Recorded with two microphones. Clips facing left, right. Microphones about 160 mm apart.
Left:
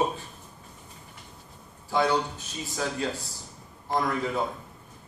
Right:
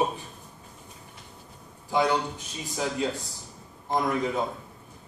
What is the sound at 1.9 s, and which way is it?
Speech, 15° right (ahead or behind).